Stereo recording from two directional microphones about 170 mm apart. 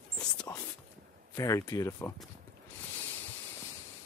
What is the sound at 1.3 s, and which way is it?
Speech, 20° left (ahead or behind).